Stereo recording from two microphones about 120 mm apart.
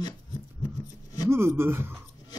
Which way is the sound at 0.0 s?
35° left (ahead or behind).